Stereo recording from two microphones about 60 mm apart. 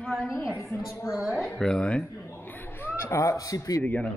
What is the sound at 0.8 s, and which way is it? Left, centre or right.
Speech, left.